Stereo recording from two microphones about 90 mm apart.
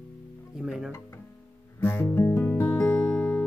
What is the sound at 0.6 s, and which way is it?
Speech, 5° right (ahead or behind).